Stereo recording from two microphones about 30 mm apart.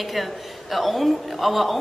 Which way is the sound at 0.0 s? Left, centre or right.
Centre.